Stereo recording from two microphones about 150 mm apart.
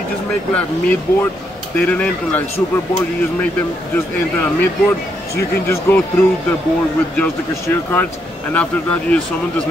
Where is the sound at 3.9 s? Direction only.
15° left (ahead or behind).